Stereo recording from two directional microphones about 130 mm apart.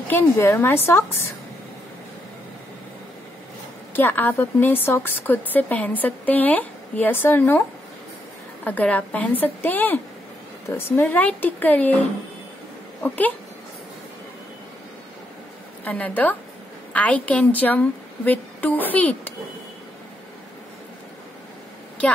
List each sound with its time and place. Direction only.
0.1 s speech: 20° left (ahead or behind)
3.9 s speech: 15° left (ahead or behind)
8.6 s speech: 10° left (ahead or behind)
13.0 s speech: 10° left (ahead or behind)
15.8 s speech: 10° left (ahead or behind)